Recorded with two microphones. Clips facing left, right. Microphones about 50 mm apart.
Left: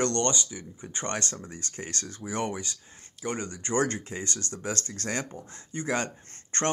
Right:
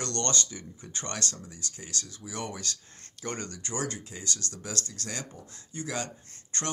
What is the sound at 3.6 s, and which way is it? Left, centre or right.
Speech, left.